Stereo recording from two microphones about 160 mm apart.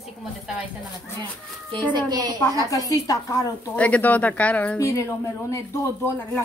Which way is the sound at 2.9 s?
20° left (ahead or behind).